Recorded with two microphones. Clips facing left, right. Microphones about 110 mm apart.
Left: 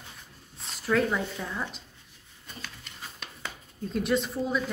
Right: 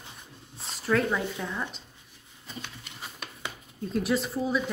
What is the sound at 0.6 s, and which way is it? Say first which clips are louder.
Speech: even; centre (ahead or behind).